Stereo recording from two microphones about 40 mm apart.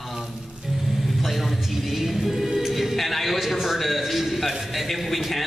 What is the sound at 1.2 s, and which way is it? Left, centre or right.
Music, centre.